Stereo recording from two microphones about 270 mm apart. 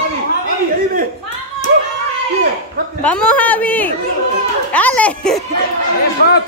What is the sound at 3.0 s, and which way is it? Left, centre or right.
A man's voice, centre.